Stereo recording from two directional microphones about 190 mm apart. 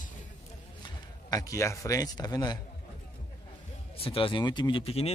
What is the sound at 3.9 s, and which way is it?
A man's voice, 30° left (ahead or behind).